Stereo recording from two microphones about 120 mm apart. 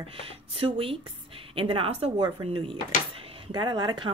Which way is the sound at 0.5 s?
50° right (ahead or behind).